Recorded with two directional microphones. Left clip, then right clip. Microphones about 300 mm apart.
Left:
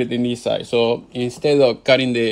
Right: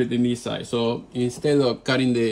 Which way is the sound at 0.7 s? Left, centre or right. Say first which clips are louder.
Left 5 dB; right.